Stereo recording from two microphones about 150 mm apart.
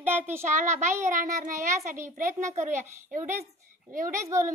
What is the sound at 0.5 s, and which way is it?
A child's voice, 55° right (ahead or behind).